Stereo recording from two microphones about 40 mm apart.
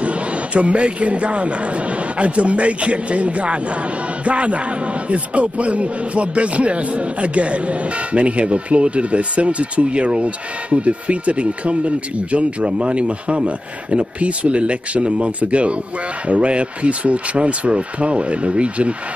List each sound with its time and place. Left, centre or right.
0.0 s a man's voice: right